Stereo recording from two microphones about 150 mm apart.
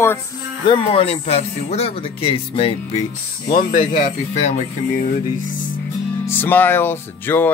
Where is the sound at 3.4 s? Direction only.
70° left (ahead or behind); by 4.6 s 50° left (ahead or behind).